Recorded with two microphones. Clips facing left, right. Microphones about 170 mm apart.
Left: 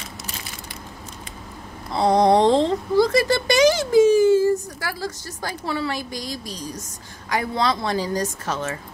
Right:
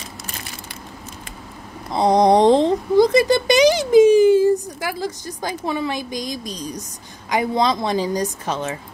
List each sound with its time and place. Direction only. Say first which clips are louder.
1.9 s a woman's voice: right 2 dB; 20° right (ahead or behind)